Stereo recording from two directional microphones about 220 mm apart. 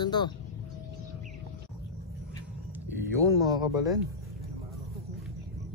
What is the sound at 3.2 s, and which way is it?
Speech, 15° right (ahead or behind).